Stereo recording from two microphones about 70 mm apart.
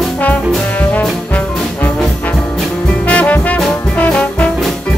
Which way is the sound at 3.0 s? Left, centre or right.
Centre.